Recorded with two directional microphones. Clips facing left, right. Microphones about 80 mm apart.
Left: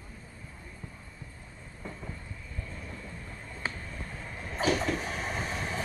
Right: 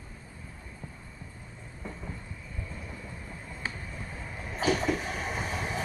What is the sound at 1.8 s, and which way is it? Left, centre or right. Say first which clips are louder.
Train: right 1 dB; centre.